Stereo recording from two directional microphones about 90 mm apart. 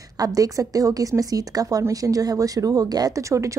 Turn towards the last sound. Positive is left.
turn(degrees=-35)  # may be behind; listen again after turning